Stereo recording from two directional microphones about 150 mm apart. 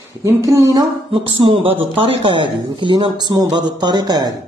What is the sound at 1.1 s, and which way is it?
Speech, 35° right (ahead or behind).